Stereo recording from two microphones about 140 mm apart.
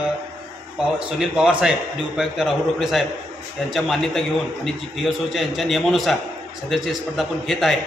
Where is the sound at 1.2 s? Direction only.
5° right (ahead or behind).